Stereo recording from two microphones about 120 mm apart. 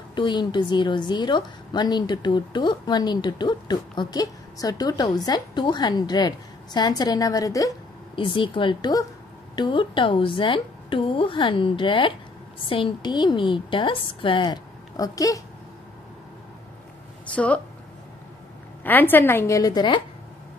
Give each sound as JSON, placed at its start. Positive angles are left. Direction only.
{"t": 0.1, "sound": "a woman's voice", "side_deg": 40}
{"t": 8.2, "sound": "a woman's voice", "side_deg": 45}
{"t": 17.3, "sound": "speech", "side_deg": 10}
{"t": 18.9, "sound": "a woman's voice", "side_deg": 15}